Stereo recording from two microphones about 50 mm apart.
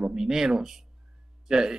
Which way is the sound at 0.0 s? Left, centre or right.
Centre.